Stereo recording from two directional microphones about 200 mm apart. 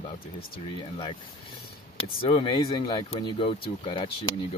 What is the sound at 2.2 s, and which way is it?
Speech, 25° left (ahead or behind).